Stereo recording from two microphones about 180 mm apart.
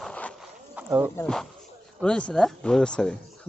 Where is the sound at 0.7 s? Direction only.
10° right (ahead or behind).